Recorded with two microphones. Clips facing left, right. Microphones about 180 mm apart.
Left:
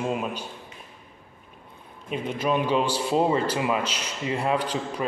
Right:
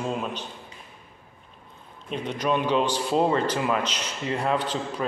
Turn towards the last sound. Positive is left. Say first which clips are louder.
# even
turn(degrees=10)  # may be behind; listen again after turning